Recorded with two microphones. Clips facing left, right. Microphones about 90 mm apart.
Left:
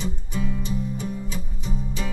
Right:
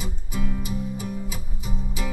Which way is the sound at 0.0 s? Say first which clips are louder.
Left 2 dB; 5° right (ahead or behind).